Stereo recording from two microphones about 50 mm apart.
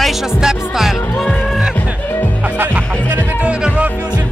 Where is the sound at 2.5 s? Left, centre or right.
Right.